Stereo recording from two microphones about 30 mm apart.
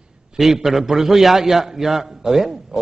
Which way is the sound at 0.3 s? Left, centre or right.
Right.